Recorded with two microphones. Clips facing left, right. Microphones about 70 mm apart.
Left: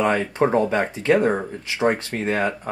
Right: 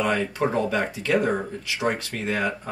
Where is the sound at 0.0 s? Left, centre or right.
Left.